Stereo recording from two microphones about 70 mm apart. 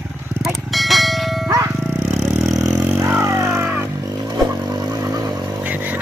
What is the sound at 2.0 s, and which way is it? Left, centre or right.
Vehicle, centre.